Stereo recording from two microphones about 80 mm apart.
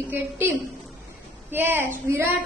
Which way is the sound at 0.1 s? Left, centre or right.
Right.